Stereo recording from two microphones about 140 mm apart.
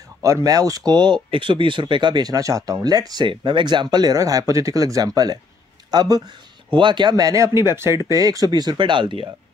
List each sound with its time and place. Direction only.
0.2 s speech: 25° right (ahead or behind)